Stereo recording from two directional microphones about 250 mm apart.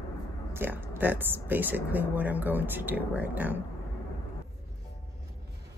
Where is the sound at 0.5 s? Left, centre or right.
Centre.